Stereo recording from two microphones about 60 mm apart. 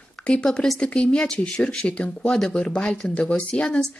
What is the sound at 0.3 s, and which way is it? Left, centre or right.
Speech, centre.